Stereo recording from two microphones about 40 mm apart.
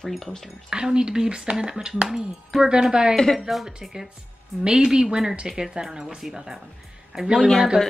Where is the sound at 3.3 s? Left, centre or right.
Centre.